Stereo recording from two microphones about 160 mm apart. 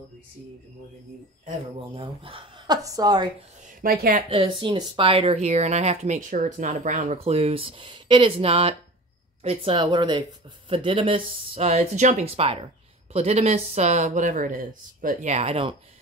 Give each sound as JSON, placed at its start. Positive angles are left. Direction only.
{"t": 2.0, "sound": "speech", "side_deg": -35}
{"t": 3.8, "sound": "a woman's voice", "side_deg": -65}
{"t": 4.3, "sound": "speech", "side_deg": -35}